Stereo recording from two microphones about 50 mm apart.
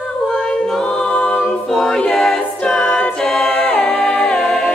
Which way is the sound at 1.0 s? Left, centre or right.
Left.